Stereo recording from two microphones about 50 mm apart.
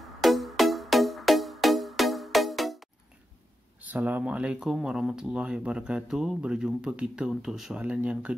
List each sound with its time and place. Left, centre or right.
0.2 s music: centre
3.8 s speech: right
4.8 s speech: centre
6.0 s speech: centre
6.4 s speech: centre
7.2 s speech: centre
7.8 s speech: right